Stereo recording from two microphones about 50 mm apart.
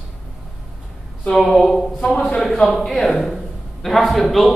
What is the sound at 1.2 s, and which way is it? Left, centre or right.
Speech, centre.